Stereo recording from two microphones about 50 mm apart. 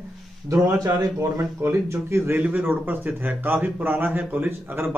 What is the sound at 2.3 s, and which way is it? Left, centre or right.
Speech, right.